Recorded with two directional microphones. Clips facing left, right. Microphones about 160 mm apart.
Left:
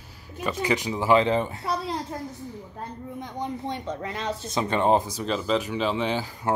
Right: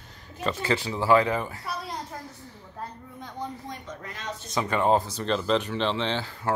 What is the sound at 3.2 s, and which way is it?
Speech, 25° left (ahead or behind).